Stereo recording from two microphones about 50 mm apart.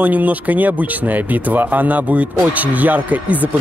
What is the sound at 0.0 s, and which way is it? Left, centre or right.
Speech, right.